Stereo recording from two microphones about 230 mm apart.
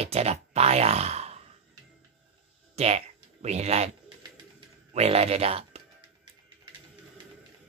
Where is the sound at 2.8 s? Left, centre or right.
Right.